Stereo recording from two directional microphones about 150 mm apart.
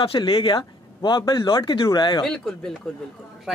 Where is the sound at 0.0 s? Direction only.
35° left (ahead or behind).